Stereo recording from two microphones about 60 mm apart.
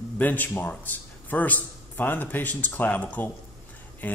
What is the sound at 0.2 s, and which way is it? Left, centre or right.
Speech, left.